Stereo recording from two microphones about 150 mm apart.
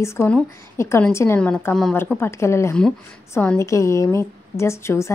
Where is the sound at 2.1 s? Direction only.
15° left (ahead or behind).